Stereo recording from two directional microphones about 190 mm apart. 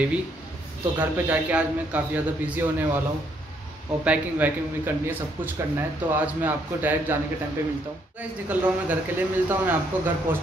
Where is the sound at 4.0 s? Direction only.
5° right (ahead or behind).